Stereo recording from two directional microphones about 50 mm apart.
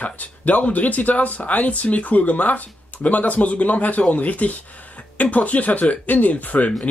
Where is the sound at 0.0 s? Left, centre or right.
Left.